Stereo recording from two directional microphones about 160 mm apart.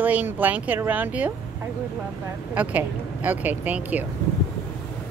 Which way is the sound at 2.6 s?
10° right (ahead or behind).